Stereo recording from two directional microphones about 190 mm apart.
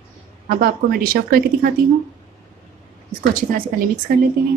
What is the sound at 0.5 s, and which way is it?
Speech, 50° right (ahead or behind).